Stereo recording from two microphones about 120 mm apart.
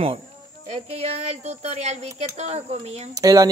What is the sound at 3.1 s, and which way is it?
Speech, 30° right (ahead or behind).